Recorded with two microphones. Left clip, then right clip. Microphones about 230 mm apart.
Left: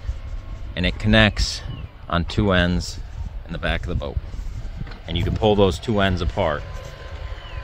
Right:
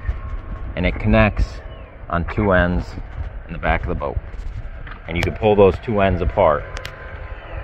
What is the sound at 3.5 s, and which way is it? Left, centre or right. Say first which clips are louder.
Speech: right 5 dB; left.